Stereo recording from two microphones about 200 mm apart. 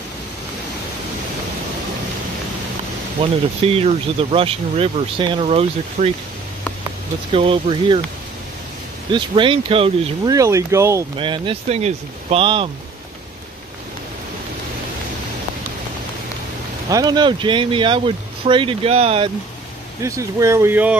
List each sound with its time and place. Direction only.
3.2 s speech: 30° right (ahead or behind)
7.3 s speech: 25° right (ahead or behind)
9.1 s speech: 25° right (ahead or behind)
11.1 s speech: 25° right (ahead or behind)
16.9 s speech: 20° right (ahead or behind)
20.0 s speech: 15° right (ahead or behind)